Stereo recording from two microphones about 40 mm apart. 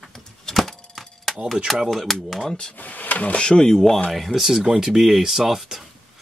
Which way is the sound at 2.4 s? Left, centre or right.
Centre.